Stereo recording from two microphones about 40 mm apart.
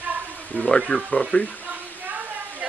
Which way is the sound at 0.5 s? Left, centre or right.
Left.